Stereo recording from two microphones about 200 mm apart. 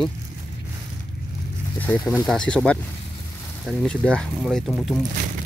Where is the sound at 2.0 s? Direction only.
20° left (ahead or behind).